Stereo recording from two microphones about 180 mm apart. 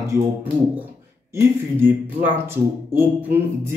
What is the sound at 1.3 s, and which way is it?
Speech, 15° right (ahead or behind).